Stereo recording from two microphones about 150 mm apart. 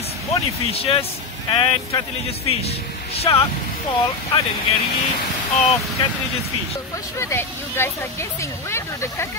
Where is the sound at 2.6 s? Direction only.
40° left (ahead or behind).